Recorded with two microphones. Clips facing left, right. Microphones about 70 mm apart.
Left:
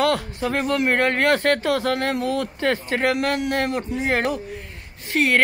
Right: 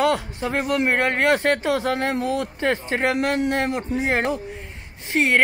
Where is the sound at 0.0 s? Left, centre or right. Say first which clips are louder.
Even; centre.